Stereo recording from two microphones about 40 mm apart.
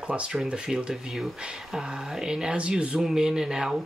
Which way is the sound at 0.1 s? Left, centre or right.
Right.